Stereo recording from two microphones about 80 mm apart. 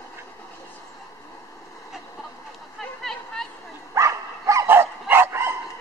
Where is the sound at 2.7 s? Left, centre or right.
Centre.